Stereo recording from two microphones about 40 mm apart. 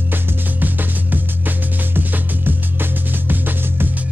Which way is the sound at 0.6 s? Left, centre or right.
Right.